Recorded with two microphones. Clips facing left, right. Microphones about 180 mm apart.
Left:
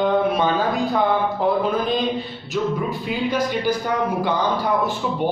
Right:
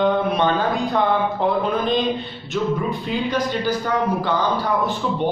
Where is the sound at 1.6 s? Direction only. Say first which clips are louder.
Right 1 dB; centre (ahead or behind).